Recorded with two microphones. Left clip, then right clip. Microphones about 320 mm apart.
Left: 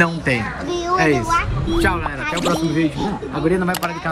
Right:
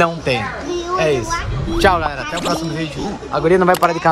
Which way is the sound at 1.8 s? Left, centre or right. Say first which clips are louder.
Right 7 dB; right.